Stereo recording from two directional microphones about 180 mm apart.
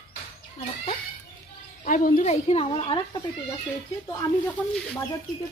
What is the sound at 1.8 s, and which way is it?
A woman's voice, 50° left (ahead or behind).